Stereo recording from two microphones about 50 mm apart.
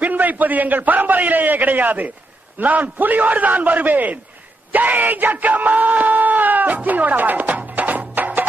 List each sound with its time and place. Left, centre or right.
0.0 s speech: right